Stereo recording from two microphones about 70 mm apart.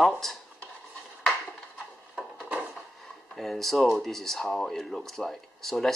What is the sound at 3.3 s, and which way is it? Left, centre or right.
Speech, centre.